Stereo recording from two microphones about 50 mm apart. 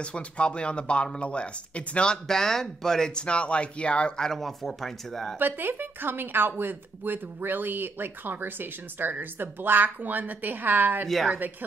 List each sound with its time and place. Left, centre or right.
0.0 s speech: left
2.2 s speech: centre; by 4.1 s left
4.2 s speech: centre
5.4 s speech: right
11.1 s speech: centre